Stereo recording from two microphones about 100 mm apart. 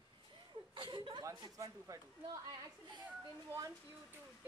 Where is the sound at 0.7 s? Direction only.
55° right (ahead or behind).